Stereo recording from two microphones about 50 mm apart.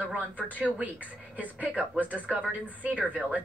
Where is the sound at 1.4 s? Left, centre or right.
Right.